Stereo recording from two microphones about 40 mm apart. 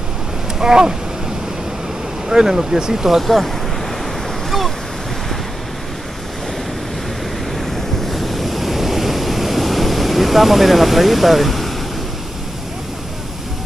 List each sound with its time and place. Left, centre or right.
0.6 s speech: centre
2.2 s speech: centre
3.2 s speech: centre
4.5 s waves: centre
7.7 s waves: centre